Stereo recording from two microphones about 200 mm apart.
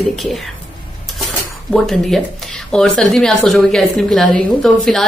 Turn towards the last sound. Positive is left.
turn(degrees=5)  # may be behind; listen again after turning